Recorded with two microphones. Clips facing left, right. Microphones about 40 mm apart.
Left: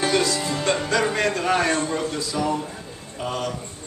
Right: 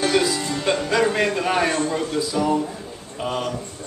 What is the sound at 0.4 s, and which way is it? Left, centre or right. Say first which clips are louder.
Music: even; centre.